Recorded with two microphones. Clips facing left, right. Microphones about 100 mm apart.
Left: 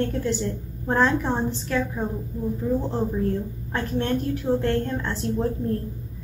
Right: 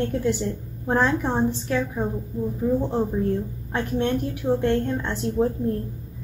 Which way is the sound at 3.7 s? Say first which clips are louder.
Right 1 dB; 15° right (ahead or behind).